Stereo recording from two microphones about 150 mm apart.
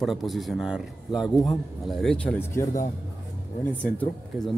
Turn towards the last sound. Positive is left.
turn(degrees=10)  # may be behind; listen again after turning